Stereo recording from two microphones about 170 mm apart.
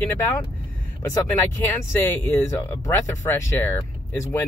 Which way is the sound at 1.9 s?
15° left (ahead or behind).